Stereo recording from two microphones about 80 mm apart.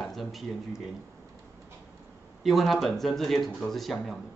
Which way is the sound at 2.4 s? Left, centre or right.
Centre.